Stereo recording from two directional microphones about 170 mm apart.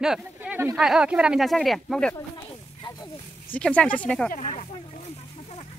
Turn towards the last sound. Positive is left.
turn(degrees=45)  # may be behind; listen again after turning